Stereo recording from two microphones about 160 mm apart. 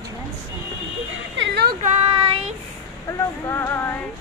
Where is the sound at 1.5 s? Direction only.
90° right.